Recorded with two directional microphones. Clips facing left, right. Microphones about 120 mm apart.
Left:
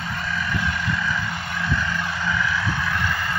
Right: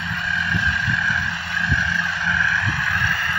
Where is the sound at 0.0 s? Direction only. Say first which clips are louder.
Right 1 dB; 40° left (ahead or behind).